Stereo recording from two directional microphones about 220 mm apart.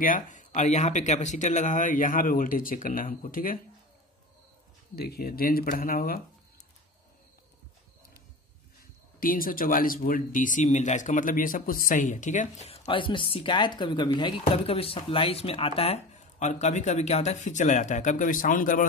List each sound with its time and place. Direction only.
0.0 s speech: 35° left (ahead or behind)
4.9 s speech: 45° left (ahead or behind)
9.2 s speech: 40° left (ahead or behind)